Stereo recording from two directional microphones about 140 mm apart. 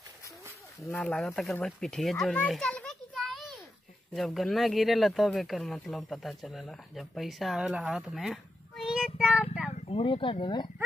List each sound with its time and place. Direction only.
0.7 s speech: 20° left (ahead or behind)
1.0 s a child's voice: 5° left (ahead or behind)
9.8 s speech: 40° left (ahead or behind)